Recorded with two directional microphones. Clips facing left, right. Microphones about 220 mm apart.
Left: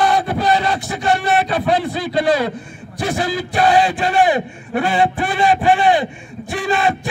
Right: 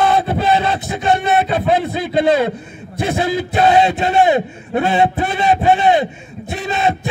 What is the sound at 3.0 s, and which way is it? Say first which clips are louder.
Speech: right 2 dB; 20° right (ahead or behind).